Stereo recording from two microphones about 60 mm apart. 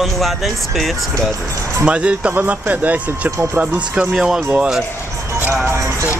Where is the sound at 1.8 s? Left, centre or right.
Right.